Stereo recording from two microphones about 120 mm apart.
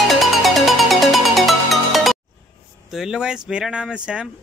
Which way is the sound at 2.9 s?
5° right (ahead or behind).